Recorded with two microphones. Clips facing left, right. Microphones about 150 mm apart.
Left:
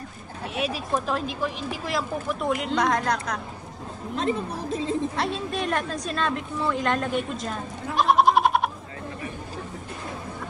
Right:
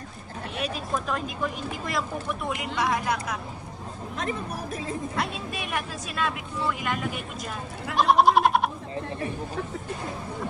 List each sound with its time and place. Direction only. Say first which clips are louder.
0.6 s speech: left 3 dB; centre (ahead or behind)
4.2 s speech: left 5 dB; 30° left (ahead or behind)
5.1 s speech: left 3 dB; centre (ahead or behind)
7.9 s goat: even; centre (ahead or behind)